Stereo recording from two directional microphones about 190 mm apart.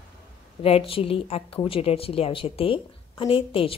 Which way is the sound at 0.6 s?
30° left (ahead or behind).